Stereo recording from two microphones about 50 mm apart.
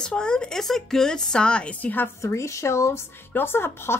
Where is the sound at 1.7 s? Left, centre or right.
Left.